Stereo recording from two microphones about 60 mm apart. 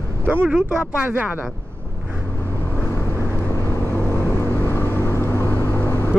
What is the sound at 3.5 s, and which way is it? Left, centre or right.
Vehicle, left.